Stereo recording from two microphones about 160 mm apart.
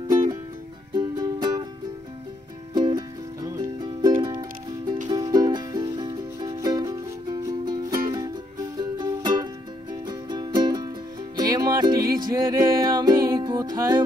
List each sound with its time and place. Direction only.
0.9 s music: 25° right (ahead or behind)
2.7 s music: 25° right (ahead or behind)